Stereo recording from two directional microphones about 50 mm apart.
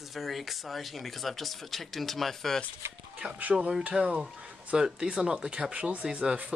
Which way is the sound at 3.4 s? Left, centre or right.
Right.